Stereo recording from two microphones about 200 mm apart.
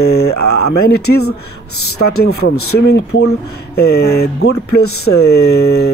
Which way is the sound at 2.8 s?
55° left (ahead or behind).